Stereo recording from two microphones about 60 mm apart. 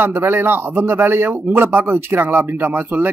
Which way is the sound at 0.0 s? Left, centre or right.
Right.